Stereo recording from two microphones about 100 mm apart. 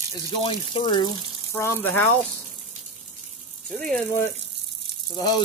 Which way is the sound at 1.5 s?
25° left (ahead or behind).